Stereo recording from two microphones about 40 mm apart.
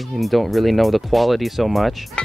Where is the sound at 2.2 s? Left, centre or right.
Left.